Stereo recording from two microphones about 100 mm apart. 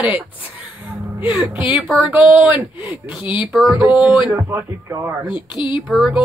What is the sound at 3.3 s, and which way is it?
Speech, 15° right (ahead or behind).